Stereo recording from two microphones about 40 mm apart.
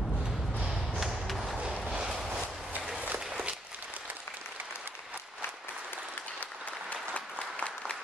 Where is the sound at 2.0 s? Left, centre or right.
Centre.